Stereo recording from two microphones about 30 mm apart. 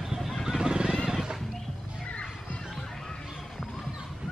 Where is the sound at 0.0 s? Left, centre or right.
Centre.